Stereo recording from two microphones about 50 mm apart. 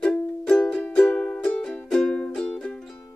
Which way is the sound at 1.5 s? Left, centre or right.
Centre.